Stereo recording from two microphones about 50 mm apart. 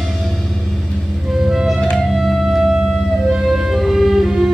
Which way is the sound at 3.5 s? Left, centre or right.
Centre.